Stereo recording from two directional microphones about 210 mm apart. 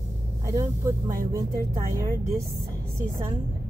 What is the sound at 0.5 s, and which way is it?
Speech, 15° right (ahead or behind).